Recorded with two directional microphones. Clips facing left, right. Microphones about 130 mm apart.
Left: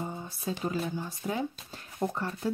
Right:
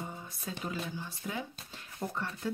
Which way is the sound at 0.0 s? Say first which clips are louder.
Left 6 dB; 30° left (ahead or behind).